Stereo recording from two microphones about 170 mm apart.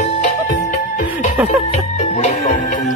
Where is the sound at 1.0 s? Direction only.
10° right (ahead or behind).